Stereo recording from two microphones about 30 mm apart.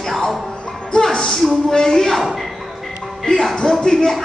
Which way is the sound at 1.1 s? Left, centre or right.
Left.